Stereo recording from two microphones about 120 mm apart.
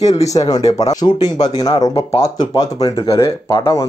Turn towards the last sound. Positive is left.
turn(degrees=25)  # may be behind; listen again after turning